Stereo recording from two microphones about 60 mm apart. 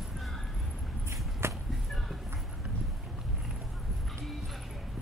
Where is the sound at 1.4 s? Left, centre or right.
Right.